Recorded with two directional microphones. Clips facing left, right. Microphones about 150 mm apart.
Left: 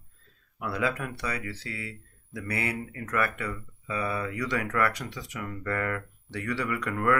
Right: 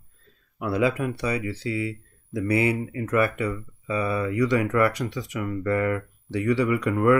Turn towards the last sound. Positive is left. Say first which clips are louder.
# right 7 dB
turn(degrees=-20)  # may be behind; listen again after turning